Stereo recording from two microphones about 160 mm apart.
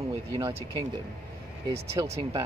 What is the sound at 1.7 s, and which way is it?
Speech, 40° right (ahead or behind).